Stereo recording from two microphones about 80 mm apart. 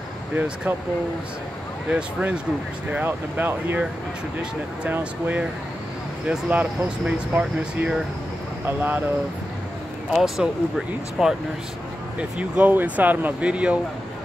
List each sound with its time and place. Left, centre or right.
0.7 s speech: right
1.9 s speech: centre
4.9 s speech: right
10.1 s speech: centre